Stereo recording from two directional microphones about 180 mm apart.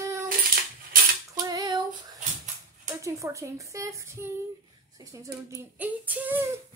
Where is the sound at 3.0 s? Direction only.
15° right (ahead or behind).